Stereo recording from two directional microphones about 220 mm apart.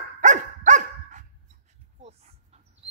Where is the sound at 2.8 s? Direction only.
30° right (ahead or behind).